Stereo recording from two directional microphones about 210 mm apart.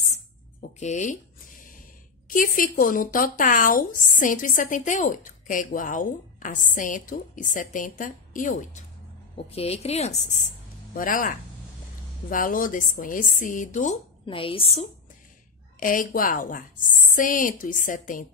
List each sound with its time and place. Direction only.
0.7 s speech: 35° left (ahead or behind)
2.2 s a woman's voice: 40° left (ahead or behind)
11.0 s speech: 40° left (ahead or behind)
15.8 s speech: 40° left (ahead or behind)